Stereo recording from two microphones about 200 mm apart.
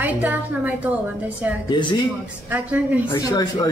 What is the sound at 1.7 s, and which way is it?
Speech, 25° left (ahead or behind).